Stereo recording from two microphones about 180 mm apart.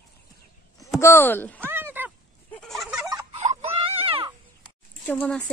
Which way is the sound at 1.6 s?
10° right (ahead or behind).